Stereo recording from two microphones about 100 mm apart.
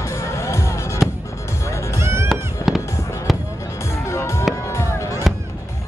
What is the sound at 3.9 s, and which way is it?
Music, 30° left (ahead or behind).